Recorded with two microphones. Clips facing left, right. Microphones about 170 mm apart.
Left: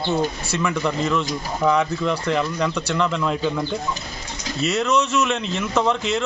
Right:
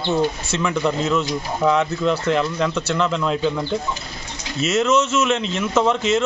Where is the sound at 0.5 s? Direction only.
Centre (ahead or behind).